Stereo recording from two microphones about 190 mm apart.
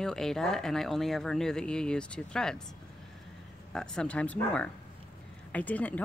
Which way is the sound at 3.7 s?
5° left (ahead or behind).